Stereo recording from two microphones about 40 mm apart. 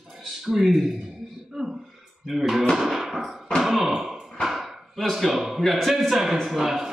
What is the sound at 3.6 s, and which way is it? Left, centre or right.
Sigh, centre.